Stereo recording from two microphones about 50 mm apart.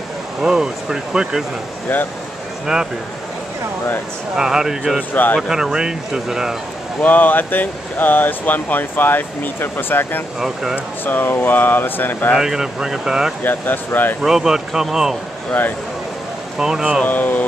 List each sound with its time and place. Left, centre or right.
0.4 s speech: centre
2.6 s speech: centre
4.4 s speech: centre
5.1 s speech: left
5.5 s speech: centre
7.0 s speech: left
10.4 s speech: centre
11.1 s speech: left
12.4 s speech: centre
13.4 s speech: left
14.2 s speech: centre
16.5 s speech: centre
17.0 s speech: left